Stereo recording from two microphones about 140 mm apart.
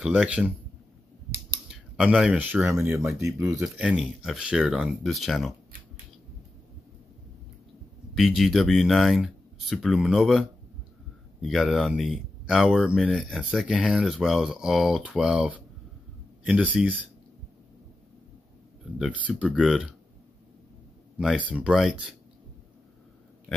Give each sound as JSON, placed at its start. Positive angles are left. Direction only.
{"t": 0.0, "sound": "speech", "side_deg": -5}
{"t": 1.7, "sound": "speech", "side_deg": -5}
{"t": 3.6, "sound": "speech", "side_deg": -5}
{"t": 8.2, "sound": "speech", "side_deg": 0}
{"t": 11.4, "sound": "speech", "side_deg": 0}
{"t": 18.9, "sound": "speech", "side_deg": -10}
{"t": 21.2, "sound": "speech", "side_deg": -5}